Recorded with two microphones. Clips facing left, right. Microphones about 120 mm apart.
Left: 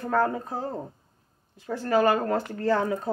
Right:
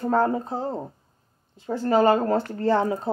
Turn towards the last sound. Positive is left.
turn(degrees=-25)  # may be behind; listen again after turning